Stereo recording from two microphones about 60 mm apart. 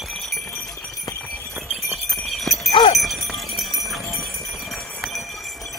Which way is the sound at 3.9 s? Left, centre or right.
Centre.